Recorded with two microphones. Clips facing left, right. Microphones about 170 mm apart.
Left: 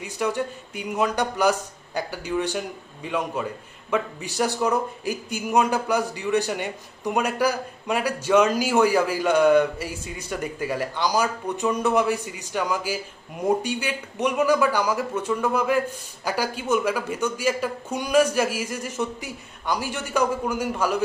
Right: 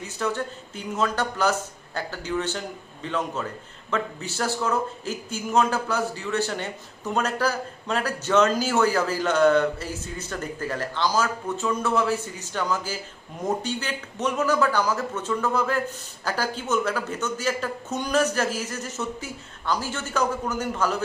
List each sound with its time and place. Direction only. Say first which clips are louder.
0.0 s a man's voice: left 2 dB; 15° left (ahead or behind)